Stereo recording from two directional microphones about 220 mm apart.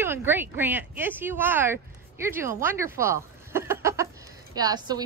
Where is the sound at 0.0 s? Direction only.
10° right (ahead or behind).